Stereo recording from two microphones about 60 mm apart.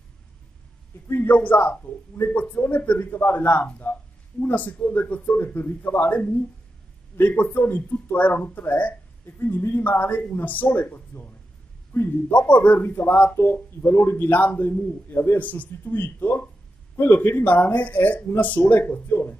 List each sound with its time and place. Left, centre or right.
1.2 s speech: left
9.2 s a man's voice: left